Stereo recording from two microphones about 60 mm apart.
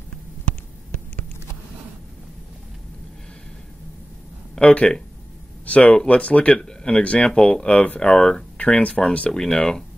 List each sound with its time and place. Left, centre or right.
4.6 s speech: centre
9.3 s speech: centre